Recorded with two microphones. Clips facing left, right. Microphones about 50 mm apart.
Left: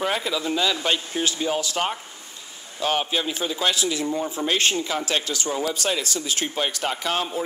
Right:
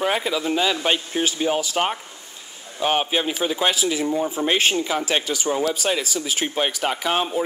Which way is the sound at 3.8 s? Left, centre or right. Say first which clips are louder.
Right 3 dB; centre.